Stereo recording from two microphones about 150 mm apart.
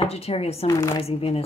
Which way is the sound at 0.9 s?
40° left (ahead or behind).